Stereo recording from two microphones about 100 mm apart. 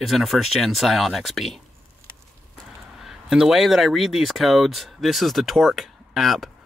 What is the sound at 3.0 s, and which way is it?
Speech, 5° right (ahead or behind).